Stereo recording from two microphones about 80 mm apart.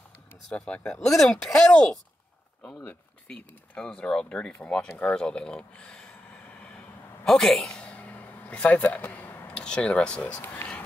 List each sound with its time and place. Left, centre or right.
0.5 s speech: centre
7.2 s a sound: centre; by 9.5 s left
9.5 s speech: centre